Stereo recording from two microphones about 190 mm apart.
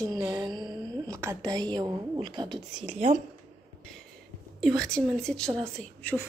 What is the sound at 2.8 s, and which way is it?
Speech, 35° right (ahead or behind).